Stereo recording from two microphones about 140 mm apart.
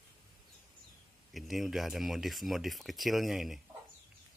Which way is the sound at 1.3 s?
Centre (ahead or behind).